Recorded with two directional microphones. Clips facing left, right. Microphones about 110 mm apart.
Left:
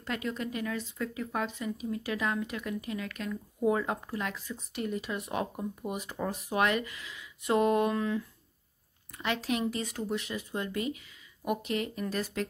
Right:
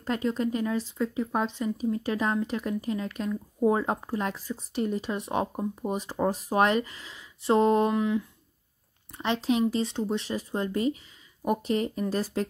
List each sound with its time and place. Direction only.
0.0 s speech: 35° right (ahead or behind)